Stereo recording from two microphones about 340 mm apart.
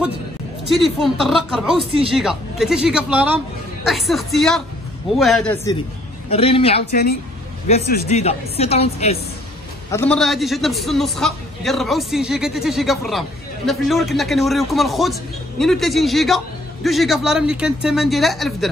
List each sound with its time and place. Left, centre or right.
0.7 s a man's voice: centre
1.9 s speech: centre
2.1 s a man's voice: centre
6.3 s a woman's voice: centre
9.8 s a man's voice: centre